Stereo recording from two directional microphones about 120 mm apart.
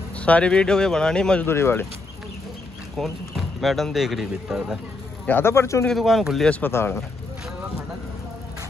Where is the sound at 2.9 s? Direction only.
Centre (ahead or behind).